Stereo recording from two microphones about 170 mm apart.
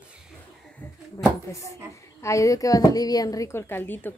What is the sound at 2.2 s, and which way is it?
A woman's voice, 15° left (ahead or behind).